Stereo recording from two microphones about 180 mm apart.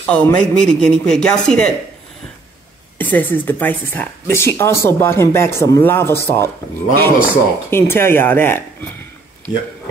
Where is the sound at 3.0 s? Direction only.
10° left (ahead or behind).